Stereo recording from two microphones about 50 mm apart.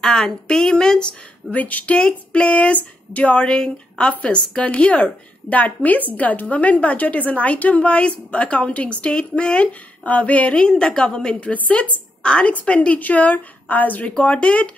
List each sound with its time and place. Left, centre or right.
0.0 s a woman's voice: centre
1.5 s a woman's voice: left; by 11.3 s centre
11.3 s a woman's voice: left